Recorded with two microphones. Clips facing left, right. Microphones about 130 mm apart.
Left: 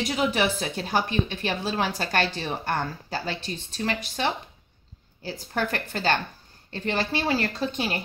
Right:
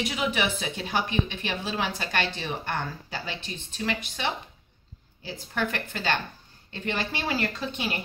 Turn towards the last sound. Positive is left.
turn(degrees=35)  # may be behind; listen again after turning